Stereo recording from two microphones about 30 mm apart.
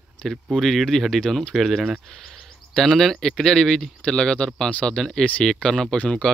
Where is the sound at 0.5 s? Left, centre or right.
Centre.